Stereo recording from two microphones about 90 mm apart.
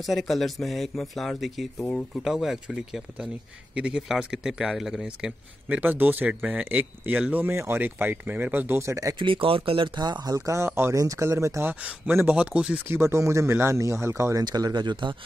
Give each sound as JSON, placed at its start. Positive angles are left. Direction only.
{"t": 0.0, "sound": "a man's voice", "side_deg": 0}
{"t": 9.2, "sound": "speech", "side_deg": -80}
{"t": 12.4, "sound": "speech", "side_deg": -10}
{"t": 12.8, "sound": "speech", "side_deg": -30}
{"t": 14.4, "sound": "speech", "side_deg": -50}